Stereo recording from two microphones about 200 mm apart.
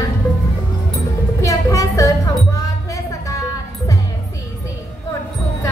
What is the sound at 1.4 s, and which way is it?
Music, 15° left (ahead or behind).